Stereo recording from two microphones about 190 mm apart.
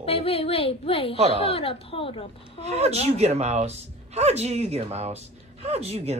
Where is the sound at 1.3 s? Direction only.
30° left (ahead or behind).